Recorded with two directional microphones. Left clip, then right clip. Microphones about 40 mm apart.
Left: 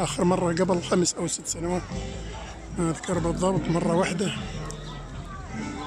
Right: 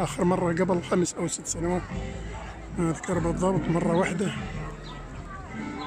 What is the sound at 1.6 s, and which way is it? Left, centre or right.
Speech, centre.